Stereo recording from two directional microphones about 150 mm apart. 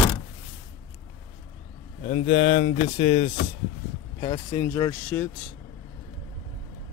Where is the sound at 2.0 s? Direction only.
40° left (ahead or behind).